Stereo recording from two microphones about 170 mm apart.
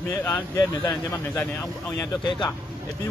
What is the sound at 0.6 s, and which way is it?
Speech, 20° left (ahead or behind).